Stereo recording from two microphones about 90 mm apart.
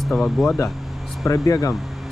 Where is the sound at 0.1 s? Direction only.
5° left (ahead or behind).